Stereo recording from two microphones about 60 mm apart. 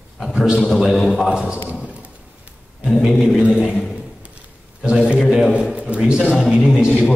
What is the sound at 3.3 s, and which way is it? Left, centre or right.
Speech, centre.